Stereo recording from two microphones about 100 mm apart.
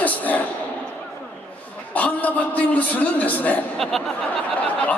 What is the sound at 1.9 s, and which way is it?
A man's voice, 15° left (ahead or behind).